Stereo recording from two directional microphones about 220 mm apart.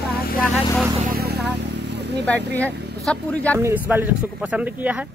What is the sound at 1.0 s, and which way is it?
Vehicle, 40° right (ahead or behind).